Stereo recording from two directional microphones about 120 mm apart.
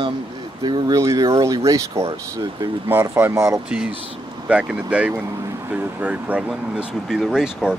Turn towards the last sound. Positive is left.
turn(degrees=-5)  # may be behind; listen again after turning